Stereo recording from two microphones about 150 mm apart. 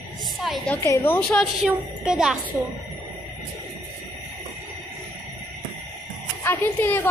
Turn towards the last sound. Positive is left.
turn(degrees=15)  # may be behind; listen again after turning